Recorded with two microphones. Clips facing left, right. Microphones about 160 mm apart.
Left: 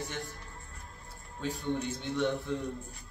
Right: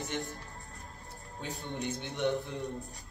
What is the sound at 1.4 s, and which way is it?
Speech, 20° right (ahead or behind).